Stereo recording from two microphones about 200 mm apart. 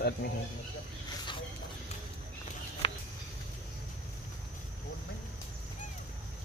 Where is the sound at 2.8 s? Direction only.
25° left (ahead or behind).